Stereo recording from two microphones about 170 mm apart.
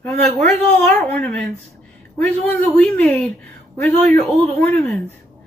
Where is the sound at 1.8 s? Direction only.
10° left (ahead or behind).